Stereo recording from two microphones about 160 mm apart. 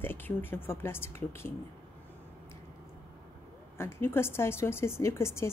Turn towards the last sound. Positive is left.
turn(degrees=15)  # may be behind; listen again after turning